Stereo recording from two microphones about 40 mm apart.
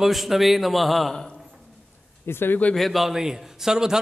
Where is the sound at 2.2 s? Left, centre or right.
Left.